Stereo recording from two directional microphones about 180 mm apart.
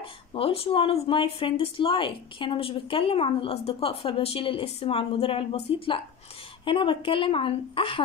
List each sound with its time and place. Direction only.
0.3 s a woman's voice: 30° left (ahead or behind)